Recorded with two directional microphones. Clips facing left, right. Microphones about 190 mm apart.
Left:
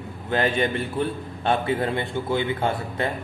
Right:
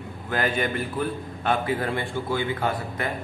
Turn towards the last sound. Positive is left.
turn(degrees=25)  # may be behind; listen again after turning